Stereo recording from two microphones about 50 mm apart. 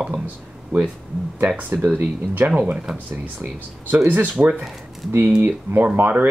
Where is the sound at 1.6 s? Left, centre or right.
Right.